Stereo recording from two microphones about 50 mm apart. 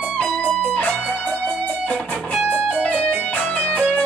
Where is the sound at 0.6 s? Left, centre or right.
Left.